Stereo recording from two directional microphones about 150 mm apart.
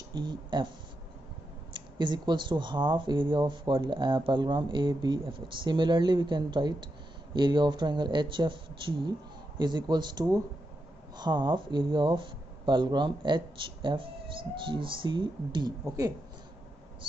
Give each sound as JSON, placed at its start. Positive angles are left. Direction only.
{"t": 0.1, "sound": "speech", "side_deg": -30}
{"t": 1.7, "sound": "speech", "side_deg": -30}